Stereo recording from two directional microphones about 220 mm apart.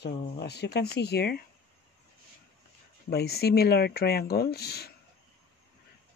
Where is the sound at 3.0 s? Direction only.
45° left (ahead or behind).